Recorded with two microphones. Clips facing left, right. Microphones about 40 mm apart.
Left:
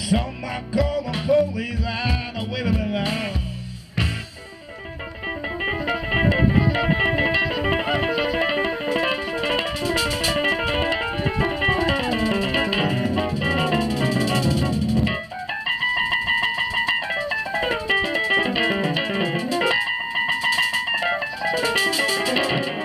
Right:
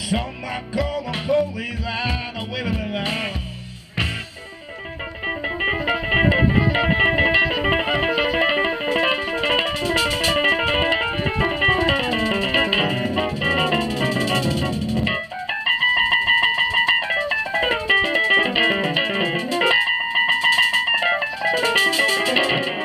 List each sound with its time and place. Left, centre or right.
0.7 s music: right
2.6 s music: right
5.6 s music: right